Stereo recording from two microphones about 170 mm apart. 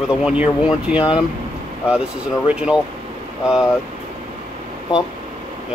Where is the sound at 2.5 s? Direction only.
5° right (ahead or behind).